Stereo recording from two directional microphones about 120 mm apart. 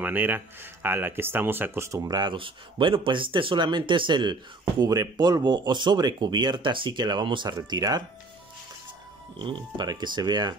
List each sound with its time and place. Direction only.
0.0 s speech: 15° right (ahead or behind); by 8.0 s 35° right (ahead or behind)
9.8 s speech: 40° right (ahead or behind)